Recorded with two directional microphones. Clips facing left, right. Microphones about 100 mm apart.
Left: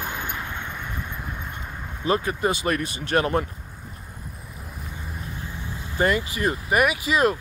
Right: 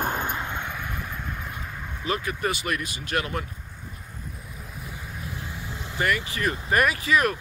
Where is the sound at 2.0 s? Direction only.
30° left (ahead or behind).